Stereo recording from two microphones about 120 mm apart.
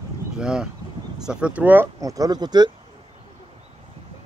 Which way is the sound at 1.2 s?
5° right (ahead or behind).